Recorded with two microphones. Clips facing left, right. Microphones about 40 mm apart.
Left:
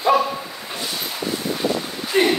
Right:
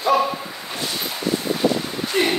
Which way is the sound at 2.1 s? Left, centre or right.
Centre.